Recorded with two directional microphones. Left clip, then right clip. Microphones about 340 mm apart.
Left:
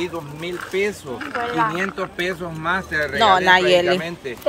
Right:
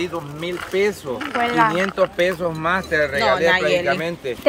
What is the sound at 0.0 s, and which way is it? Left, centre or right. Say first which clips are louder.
Speech: right 1 dB; centre.